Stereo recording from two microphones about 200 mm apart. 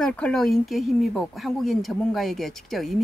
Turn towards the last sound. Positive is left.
turn(degrees=0)  # may be behind; listen again after turning